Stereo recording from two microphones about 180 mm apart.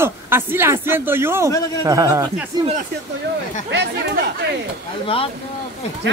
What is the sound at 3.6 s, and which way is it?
Speech, 70° right (ahead or behind).